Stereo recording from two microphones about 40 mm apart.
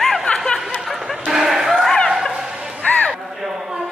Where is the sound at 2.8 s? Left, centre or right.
Left.